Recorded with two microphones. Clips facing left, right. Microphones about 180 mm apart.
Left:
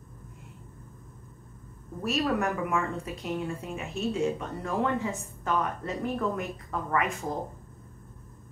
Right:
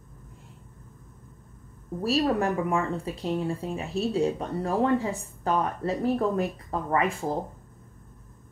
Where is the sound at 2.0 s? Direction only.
35° right (ahead or behind).